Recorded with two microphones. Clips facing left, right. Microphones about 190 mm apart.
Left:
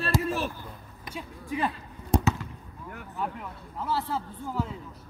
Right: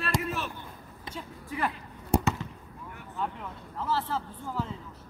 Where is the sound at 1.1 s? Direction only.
15° left (ahead or behind).